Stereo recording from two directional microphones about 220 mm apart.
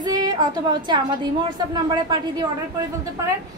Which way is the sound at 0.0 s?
15° right (ahead or behind).